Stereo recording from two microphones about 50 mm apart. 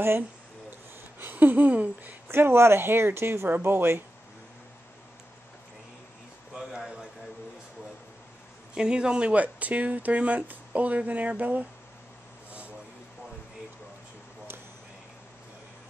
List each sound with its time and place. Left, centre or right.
1.2 s speech: right
2.3 s speech: right
6.5 s a sound: centre
8.7 s speech: centre